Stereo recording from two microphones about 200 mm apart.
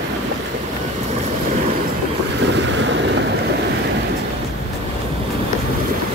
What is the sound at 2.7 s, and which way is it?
Boat, 65° right (ahead or behind).